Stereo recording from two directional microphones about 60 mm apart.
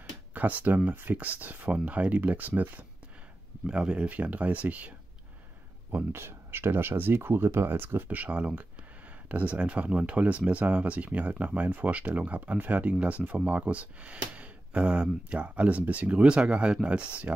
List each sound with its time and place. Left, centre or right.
0.3 s speech: right
3.6 s speech: centre
5.9 s speech: right
8.2 s speech: right